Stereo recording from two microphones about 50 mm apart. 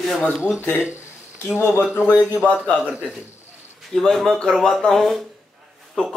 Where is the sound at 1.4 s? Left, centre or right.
Left.